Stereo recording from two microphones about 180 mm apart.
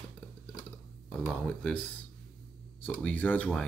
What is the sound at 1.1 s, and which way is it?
Speech, 5° left (ahead or behind).